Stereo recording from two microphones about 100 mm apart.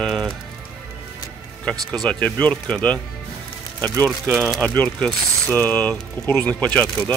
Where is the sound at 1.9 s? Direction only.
10° left (ahead or behind).